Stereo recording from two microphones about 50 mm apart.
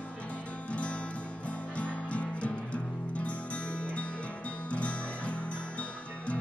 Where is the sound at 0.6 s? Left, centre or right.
Left.